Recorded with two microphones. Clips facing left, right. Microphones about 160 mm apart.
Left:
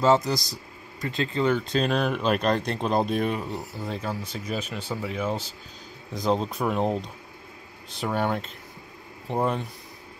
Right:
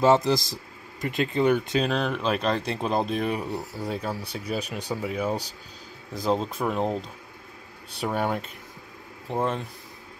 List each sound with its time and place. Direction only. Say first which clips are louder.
0.0 s speech: right 1 dB; 20° right (ahead or behind)
1.9 s speech: left 2 dB; 5° left (ahead or behind)
3.3 s speech: right 1 dB; 10° right (ahead or behind)